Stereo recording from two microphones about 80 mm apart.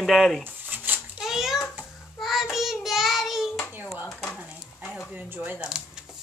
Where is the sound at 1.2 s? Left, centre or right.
Centre.